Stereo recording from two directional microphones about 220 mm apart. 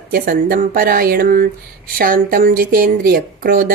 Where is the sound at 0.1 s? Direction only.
40° right (ahead or behind).